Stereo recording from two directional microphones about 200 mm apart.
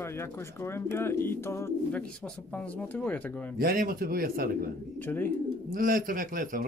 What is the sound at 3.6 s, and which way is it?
Speech, 45° right (ahead or behind).